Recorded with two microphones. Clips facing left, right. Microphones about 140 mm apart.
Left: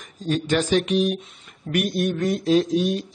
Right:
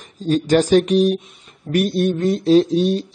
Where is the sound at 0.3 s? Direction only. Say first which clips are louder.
Right 6 dB; 40° right (ahead or behind).